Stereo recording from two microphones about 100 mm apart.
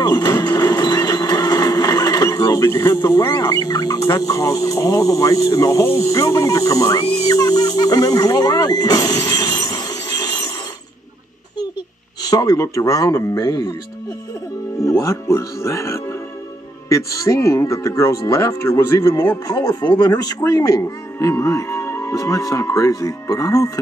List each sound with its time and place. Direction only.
0.0 s printer: 40° left (ahead or behind)
6.0 s speech: 35° left (ahead or behind)
12.3 s speech: 40° left (ahead or behind)
14.8 s speech: 30° left (ahead or behind)